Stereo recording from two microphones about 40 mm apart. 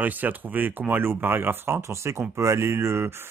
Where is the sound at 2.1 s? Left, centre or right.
Right.